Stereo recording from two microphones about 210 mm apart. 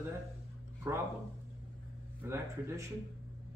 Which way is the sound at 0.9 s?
15° right (ahead or behind).